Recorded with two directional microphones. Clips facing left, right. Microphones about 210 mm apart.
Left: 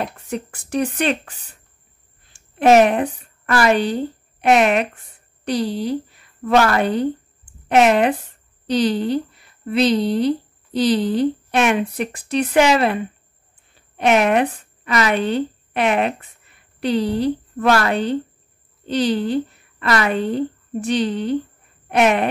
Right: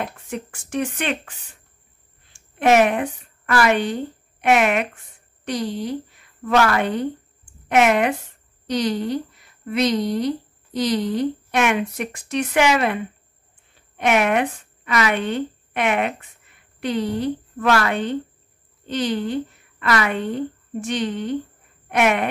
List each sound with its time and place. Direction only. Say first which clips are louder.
0.3 s speech: left 3 dB; 35° left (ahead or behind)
2.3 s a woman's voice: left 4 dB; 35° left (ahead or behind)